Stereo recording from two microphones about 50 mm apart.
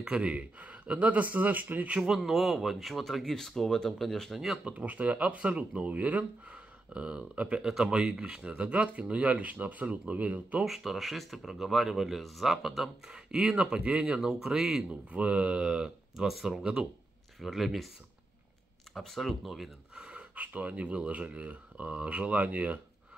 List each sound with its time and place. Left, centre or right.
0.0 s speech: right
2.0 s speech: centre
4.6 s speech: right
7.6 s speech: centre; by 10.6 s right
10.6 s speech: centre
13.1 s speech: centre
15.0 s speech: right
17.4 s speech: centre
18.9 s speech: centre
20.0 s speech: right